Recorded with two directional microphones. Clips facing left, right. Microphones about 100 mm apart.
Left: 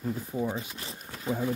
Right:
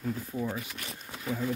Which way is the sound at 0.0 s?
20° left (ahead or behind).